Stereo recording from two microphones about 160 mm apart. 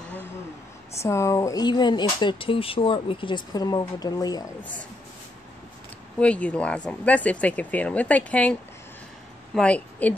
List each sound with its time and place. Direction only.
0.9 s speech: 15° left (ahead or behind)
6.1 s a woman's voice: 10° left (ahead or behind)